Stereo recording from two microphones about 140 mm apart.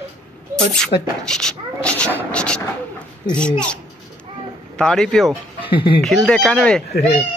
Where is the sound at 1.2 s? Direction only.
5° left (ahead or behind).